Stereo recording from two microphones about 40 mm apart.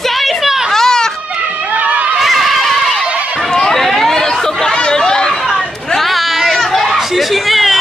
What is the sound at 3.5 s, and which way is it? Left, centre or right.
Chatter, centre.